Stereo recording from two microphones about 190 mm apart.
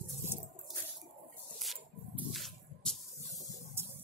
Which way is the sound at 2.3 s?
Centre (ahead or behind).